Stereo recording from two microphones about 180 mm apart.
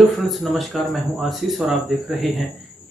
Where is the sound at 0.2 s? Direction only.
Centre (ahead or behind).